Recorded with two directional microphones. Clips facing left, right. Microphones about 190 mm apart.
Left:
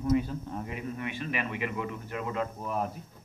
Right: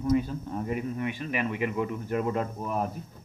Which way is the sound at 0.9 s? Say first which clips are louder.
Right 3 dB; 40° right (ahead or behind).